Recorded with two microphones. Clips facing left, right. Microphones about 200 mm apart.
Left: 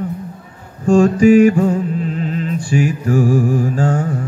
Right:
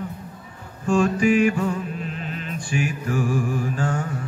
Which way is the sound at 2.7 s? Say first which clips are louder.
Left 8 dB; 40° left (ahead or behind).